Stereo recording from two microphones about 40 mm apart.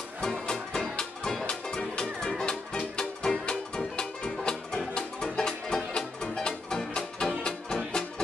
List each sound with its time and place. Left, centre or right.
0.2 s music: centre